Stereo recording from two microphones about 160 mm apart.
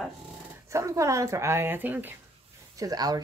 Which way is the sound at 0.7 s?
20° right (ahead or behind).